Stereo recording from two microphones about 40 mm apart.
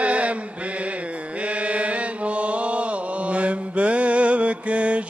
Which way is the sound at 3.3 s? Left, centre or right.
Right.